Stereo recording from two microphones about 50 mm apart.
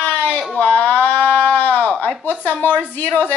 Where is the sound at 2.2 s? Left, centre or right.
Left.